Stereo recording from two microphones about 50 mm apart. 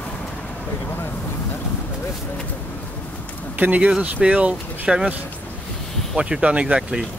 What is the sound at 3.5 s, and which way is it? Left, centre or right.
Speech, right.